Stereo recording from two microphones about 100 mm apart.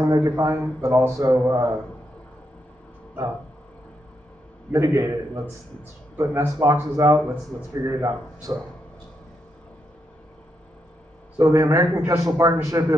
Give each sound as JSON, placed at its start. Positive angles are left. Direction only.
{"t": 0.0, "sound": "a man's voice", "side_deg": -35}
{"t": 4.7, "sound": "a man's voice", "side_deg": -30}
{"t": 11.3, "sound": "a man's voice", "side_deg": -35}